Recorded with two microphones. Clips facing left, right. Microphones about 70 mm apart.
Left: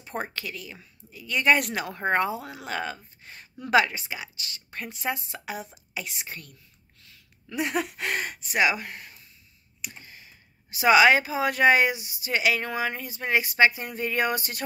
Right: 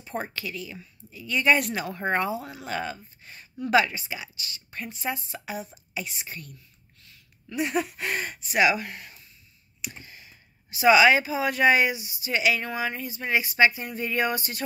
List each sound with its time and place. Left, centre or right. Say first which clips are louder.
0.0 s speech: even; left
2.0 s a woman's voice: left 2 dB; left
7.4 s speech: right 1 dB; left
10.7 s speech: even; left